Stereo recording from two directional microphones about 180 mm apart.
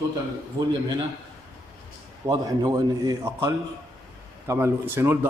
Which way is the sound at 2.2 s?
20° right (ahead or behind).